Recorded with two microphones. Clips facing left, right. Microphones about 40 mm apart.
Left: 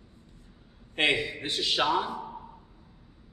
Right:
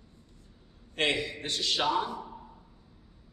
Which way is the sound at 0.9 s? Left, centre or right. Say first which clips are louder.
Left 3 dB; centre.